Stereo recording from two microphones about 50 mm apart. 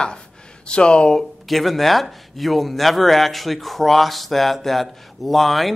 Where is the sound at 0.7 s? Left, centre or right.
Centre.